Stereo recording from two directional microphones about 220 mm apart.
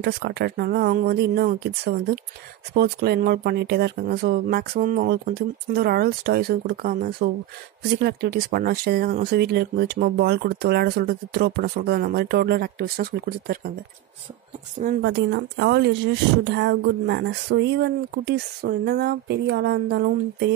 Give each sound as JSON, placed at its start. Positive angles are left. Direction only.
{"t": 0.0, "sound": "speech", "side_deg": -45}
{"t": 14.8, "sound": "speech", "side_deg": -45}